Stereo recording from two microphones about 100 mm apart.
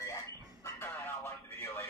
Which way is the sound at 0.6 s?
20° left (ahead or behind).